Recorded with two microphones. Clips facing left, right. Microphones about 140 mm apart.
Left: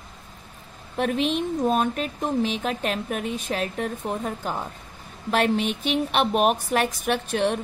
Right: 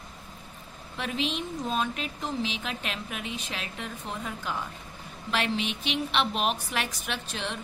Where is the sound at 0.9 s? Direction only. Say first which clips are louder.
Left 8 dB; 50° left (ahead or behind).